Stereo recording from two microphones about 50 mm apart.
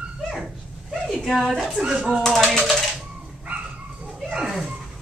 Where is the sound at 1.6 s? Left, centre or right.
Centre.